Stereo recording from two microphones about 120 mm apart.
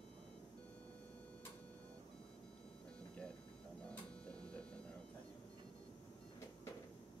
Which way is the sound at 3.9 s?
10° left (ahead or behind).